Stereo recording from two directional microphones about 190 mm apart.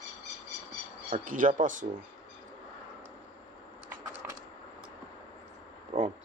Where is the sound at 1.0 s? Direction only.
45° right (ahead or behind).